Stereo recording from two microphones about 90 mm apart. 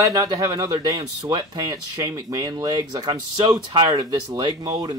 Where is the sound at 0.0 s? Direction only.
40° right (ahead or behind).